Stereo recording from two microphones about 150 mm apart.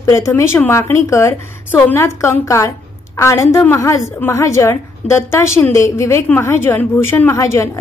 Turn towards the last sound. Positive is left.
turn(degrees=20)  # may be behind; listen again after turning